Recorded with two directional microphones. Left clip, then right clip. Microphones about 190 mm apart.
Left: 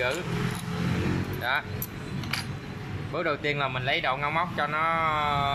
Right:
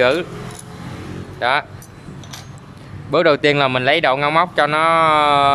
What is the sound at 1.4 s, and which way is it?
Speech, 45° right (ahead or behind).